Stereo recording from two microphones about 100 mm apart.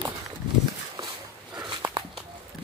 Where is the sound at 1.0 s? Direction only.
45° right (ahead or behind).